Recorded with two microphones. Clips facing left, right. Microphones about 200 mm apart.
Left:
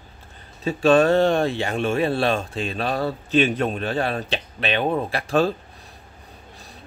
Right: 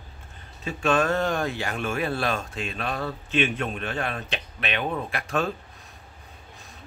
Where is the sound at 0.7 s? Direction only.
35° left (ahead or behind).